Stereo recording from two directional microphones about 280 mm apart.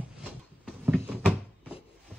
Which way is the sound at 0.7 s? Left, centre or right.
Centre.